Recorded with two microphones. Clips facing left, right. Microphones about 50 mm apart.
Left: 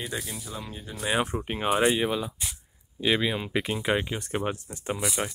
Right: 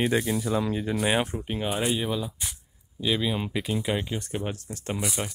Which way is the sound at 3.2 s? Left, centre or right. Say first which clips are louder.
Even; centre.